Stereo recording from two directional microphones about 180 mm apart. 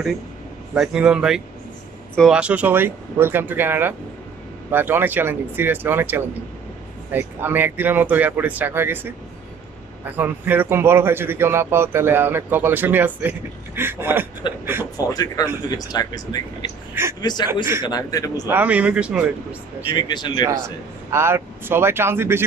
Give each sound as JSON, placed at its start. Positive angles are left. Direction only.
{"t": 0.7, "sound": "a man's voice", "side_deg": -5}
{"t": 14.4, "sound": "a man's voice", "side_deg": 25}
{"t": 18.5, "sound": "a man's voice", "side_deg": -10}
{"t": 19.9, "sound": "a man's voice", "side_deg": 25}
{"t": 21.1, "sound": "a man's voice", "side_deg": -15}